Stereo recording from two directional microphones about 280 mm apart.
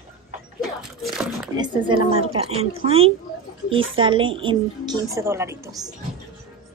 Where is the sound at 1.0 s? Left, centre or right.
Centre.